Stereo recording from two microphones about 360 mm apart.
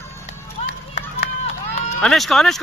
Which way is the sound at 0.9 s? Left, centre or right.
Centre.